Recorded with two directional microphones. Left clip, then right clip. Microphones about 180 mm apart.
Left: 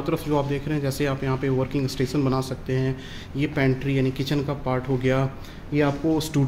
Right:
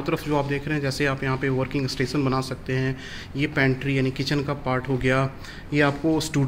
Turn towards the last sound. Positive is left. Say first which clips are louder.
# even
turn(degrees=0)  # may be behind; listen again after turning